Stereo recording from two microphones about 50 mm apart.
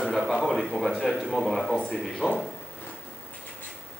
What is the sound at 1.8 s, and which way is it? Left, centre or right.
Speech, centre.